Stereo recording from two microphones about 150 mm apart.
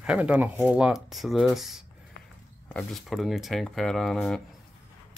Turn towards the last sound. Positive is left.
turn(degrees=5)  # may be behind; listen again after turning